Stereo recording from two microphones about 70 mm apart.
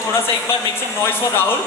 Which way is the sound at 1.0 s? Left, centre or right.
Left.